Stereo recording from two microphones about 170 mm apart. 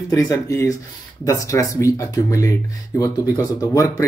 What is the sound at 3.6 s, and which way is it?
Speech, 20° left (ahead or behind).